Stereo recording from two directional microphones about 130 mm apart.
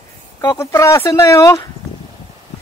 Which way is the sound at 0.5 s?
20° left (ahead or behind).